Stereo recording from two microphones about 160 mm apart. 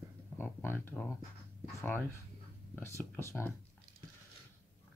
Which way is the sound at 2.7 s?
15° left (ahead or behind).